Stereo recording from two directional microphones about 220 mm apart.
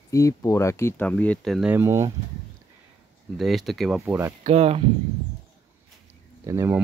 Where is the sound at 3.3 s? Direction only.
Centre (ahead or behind).